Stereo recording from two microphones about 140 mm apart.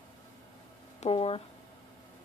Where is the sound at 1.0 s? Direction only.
45° left (ahead or behind).